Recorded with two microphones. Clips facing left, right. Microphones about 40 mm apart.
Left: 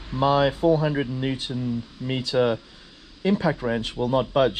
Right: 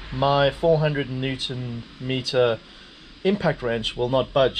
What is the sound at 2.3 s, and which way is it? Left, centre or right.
Speech, right.